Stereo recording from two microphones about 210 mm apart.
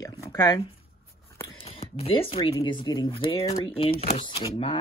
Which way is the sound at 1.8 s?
30° left (ahead or behind).